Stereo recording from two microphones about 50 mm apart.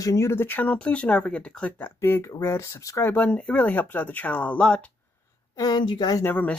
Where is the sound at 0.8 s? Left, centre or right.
Left.